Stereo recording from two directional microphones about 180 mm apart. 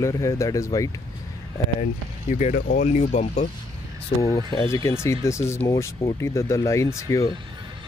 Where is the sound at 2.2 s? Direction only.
40° left (ahead or behind).